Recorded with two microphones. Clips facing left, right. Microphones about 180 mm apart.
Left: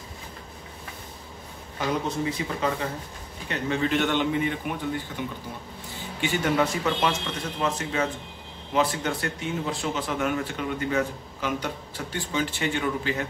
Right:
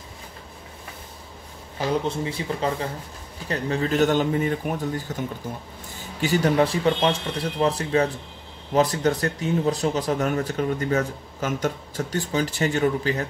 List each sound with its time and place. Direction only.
2.0 s speech: 30° right (ahead or behind)
6.2 s speech: 35° right (ahead or behind)